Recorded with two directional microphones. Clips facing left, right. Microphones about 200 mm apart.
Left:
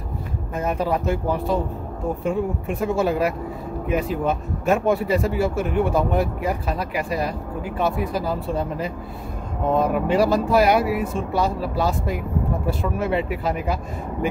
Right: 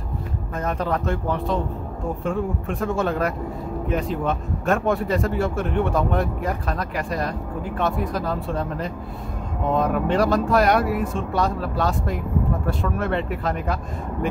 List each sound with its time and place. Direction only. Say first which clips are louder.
0.6 s a man's voice: left 2 dB; 5° left (ahead or behind)